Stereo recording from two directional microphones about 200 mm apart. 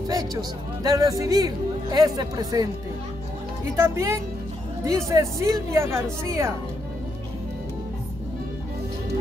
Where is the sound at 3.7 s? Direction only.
15° right (ahead or behind).